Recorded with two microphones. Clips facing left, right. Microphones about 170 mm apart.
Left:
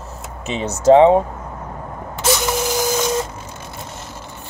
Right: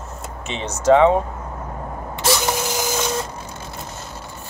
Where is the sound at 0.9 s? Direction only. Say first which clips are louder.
Left 4 dB; 25° left (ahead or behind).